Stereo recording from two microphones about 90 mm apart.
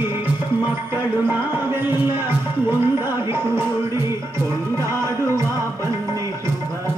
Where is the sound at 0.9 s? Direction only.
25° right (ahead or behind).